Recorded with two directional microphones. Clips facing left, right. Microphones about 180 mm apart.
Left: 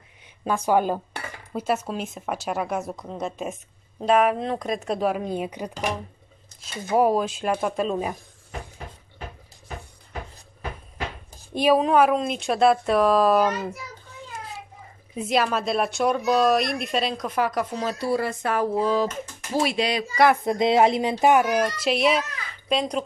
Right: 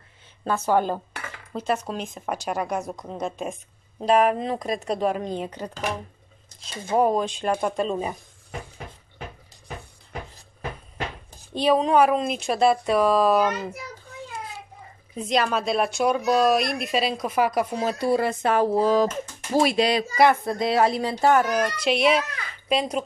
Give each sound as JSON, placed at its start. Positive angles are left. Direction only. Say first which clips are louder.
{"t": 0.5, "sound": "speech", "louder": "left 1 dB", "side_deg": 10}
{"t": 11.5, "sound": "speech", "louder": "left 1 dB", "side_deg": 10}
{"t": 15.1, "sound": "speech", "louder": "even", "side_deg": 5}
{"t": 18.8, "sound": "speech", "louder": "right 3 dB", "side_deg": -40}
{"t": 20.4, "sound": "speech", "louder": "left 3 dB", "side_deg": 20}